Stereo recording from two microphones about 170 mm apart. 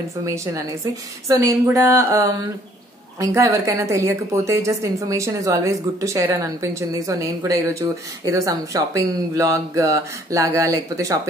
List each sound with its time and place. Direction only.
0.2 s a woman's voice: 20° right (ahead or behind)